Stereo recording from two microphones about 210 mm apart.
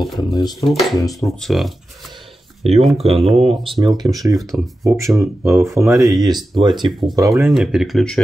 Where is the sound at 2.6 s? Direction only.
30° right (ahead or behind).